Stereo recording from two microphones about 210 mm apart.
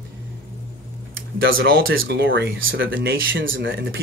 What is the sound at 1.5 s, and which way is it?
Speech, 45° right (ahead or behind).